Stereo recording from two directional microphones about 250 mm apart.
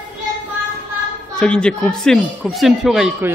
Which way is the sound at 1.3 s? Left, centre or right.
Centre.